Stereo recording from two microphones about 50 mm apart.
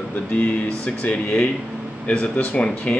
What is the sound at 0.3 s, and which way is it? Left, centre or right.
Speech, left.